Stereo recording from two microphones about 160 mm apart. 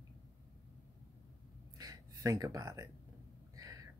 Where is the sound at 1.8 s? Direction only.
20° right (ahead or behind).